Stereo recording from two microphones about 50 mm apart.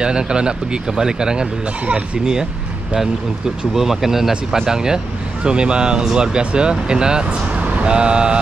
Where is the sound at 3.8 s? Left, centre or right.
Centre.